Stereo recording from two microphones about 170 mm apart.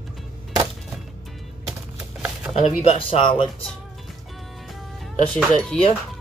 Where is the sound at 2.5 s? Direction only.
40° left (ahead or behind).